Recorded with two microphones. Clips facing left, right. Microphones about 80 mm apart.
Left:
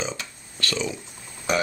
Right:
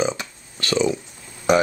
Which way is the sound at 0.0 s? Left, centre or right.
Centre.